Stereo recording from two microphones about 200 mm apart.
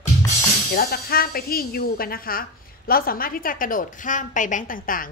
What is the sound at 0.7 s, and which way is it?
A woman's voice, 50° left (ahead or behind).